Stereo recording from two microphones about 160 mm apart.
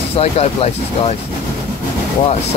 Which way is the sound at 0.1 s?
40° left (ahead or behind).